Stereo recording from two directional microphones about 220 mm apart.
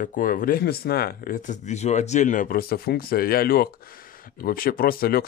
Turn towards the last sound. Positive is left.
turn(degrees=45)  # may be behind; listen again after turning